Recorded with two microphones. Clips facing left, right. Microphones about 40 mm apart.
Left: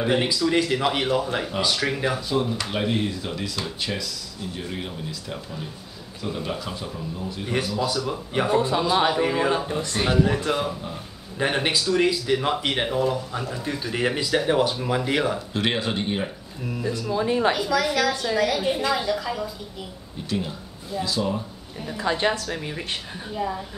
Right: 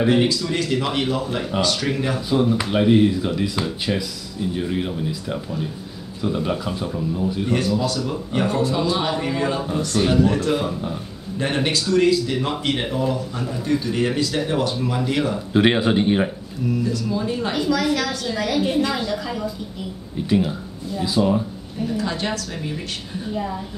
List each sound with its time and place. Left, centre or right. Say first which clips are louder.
0.3 s speech: left 1 dB; centre
2.1 s speech: right 5 dB; centre
7.4 s speech: right 2 dB; centre; by 10.0 s left
10.0 s speech: right 2 dB; centre
15.5 s speech: right 8 dB; centre
16.8 s speech: right 1 dB; left
17.5 s a woman's voice: right 2 dB; centre
20.2 s speech: right 8 dB; centre
21.9 s speech: left 3 dB; left
23.3 s a woman's voice: even; centre